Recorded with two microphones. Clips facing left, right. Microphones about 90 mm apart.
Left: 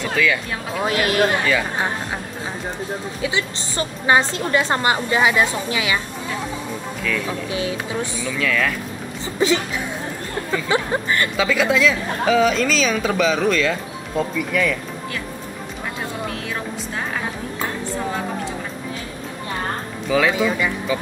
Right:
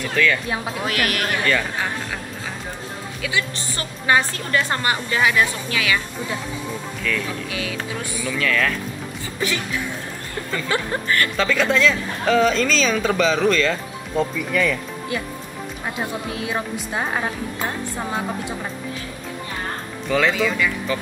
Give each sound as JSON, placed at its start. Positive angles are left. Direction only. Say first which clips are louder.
{"t": 0.1, "sound": "a woman's voice", "louder": "even", "side_deg": 5}
{"t": 0.7, "sound": "a woman's voice", "louder": "left 8 dB", "side_deg": 25}
{"t": 3.2, "sound": "a woman's voice", "louder": "right 1 dB", "side_deg": 25}
{"t": 7.0, "sound": "a woman's voice", "louder": "left 1 dB", "side_deg": 5}
{"t": 8.3, "sound": "a woman's voice", "louder": "right 1 dB", "side_deg": 0}
{"t": 9.4, "sound": "a woman's voice", "louder": "left 7 dB", "side_deg": 25}
{"t": 10.7, "sound": "a woman's voice", "louder": "left 2 dB", "side_deg": 20}
{"t": 11.3, "sound": "a woman's voice", "louder": "left 2 dB", "side_deg": 5}
{"t": 16.4, "sound": "speech", "louder": "right 2 dB", "side_deg": -20}
{"t": 20.1, "sound": "speech", "louder": "left 1 dB", "side_deg": 5}
{"t": 20.4, "sound": "a woman's voice", "louder": "left 1 dB", "side_deg": 25}